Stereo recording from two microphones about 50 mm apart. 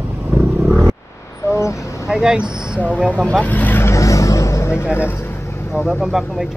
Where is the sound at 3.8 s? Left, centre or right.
Left.